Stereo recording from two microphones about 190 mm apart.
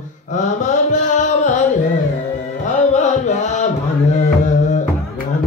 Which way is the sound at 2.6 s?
40° left (ahead or behind).